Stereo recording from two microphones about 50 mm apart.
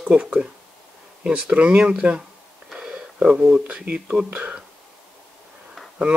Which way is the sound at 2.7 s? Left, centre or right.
Centre.